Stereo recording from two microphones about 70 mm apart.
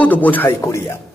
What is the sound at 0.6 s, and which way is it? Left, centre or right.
Speech, left.